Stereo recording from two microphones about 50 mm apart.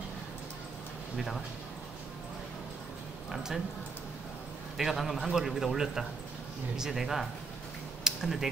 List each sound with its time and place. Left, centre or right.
1.1 s speech: centre
3.3 s speech: centre
4.7 s a man's voice: centre
8.0 s a sound: centre